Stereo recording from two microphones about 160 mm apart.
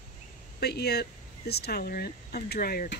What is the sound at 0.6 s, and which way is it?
Speech, 85° left.